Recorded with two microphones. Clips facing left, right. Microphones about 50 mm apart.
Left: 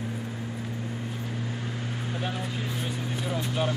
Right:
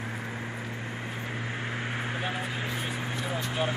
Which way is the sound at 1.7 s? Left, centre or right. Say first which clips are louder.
Right 1 dB; right.